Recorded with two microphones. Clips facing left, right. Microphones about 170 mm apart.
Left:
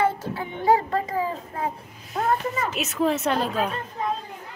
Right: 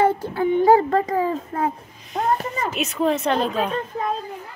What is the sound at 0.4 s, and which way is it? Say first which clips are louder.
A child's voice: right 6 dB; 40° right (ahead or behind).